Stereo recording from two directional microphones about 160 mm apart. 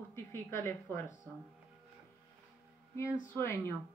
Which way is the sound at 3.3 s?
15° left (ahead or behind).